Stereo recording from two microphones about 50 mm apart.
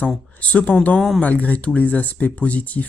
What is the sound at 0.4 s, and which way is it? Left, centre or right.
Speech, left.